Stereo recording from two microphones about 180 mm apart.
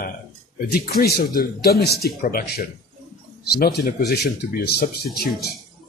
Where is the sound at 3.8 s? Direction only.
60° left (ahead or behind).